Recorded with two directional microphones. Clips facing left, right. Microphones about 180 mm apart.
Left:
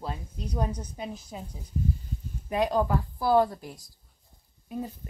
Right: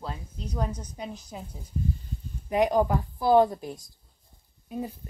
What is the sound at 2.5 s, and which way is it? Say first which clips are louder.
A woman's voice: right 2 dB; 15° right (ahead or behind).